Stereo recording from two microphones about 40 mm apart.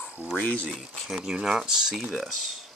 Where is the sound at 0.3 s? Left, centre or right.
Left.